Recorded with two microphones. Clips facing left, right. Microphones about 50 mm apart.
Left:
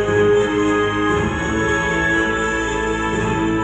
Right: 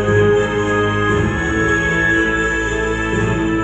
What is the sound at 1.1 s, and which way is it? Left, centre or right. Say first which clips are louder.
Music: right 2 dB; right.